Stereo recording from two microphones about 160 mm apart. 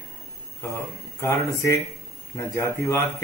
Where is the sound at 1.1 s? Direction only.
20° left (ahead or behind).